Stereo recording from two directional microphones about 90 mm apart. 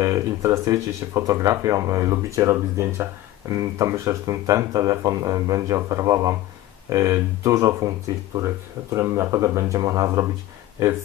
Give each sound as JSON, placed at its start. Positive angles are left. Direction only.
{"t": 0.0, "sound": "speech", "side_deg": -35}
{"t": 8.9, "sound": "speech", "side_deg": -30}
{"t": 9.8, "sound": "speech", "side_deg": -45}